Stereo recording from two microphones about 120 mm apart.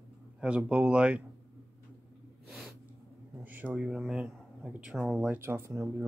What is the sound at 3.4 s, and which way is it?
Speech, 15° right (ahead or behind).